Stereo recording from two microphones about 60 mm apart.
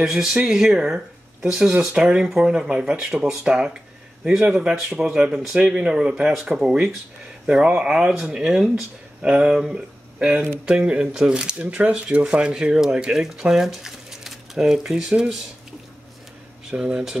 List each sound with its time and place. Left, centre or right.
0.0 s speech: centre
16.7 s speech: centre